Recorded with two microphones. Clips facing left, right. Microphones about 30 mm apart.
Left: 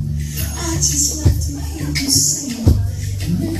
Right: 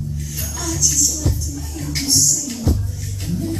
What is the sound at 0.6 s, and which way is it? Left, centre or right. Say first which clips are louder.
Music: even; centre.